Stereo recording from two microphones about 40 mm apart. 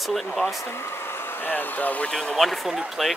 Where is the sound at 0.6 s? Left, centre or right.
Left.